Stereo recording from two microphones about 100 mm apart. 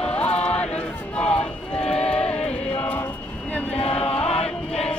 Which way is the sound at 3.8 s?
80° left.